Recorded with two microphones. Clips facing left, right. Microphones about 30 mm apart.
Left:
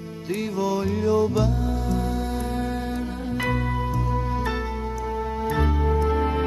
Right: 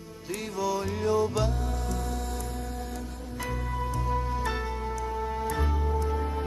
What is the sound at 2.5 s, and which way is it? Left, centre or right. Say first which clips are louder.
Music: left 9 dB; left.